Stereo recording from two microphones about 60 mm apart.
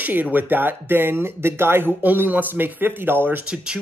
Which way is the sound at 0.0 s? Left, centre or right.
Right.